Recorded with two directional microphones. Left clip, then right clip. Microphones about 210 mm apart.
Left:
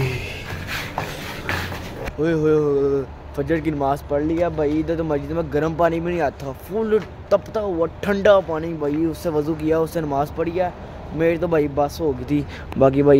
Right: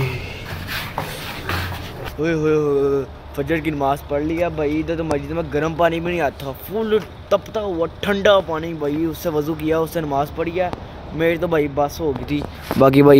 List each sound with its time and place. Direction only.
2.2 s speech: centre (ahead or behind)
12.3 s speech: 25° left (ahead or behind)
12.7 s speech: 25° right (ahead or behind)